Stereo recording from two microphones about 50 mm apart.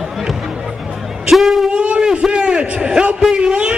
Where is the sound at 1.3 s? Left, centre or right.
Centre.